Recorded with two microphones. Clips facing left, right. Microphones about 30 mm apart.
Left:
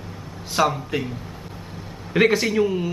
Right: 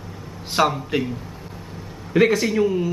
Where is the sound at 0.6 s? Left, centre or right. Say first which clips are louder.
Right 1 dB; centre.